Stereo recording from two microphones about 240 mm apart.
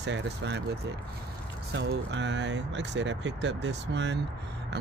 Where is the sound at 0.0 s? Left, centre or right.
Right.